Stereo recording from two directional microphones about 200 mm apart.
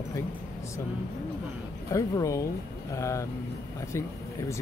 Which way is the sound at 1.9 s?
15° left (ahead or behind).